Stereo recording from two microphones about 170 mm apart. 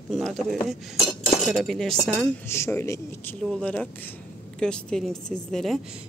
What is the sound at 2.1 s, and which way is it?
Speech, 15° left (ahead or behind).